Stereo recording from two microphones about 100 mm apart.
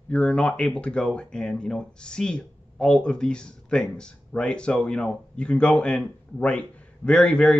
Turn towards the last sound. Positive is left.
turn(degrees=10)  # may be behind; listen again after turning